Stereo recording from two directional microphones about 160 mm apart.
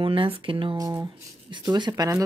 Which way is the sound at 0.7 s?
25° right (ahead or behind).